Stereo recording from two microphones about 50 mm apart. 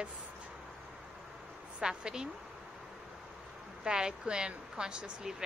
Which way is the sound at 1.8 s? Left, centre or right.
Centre.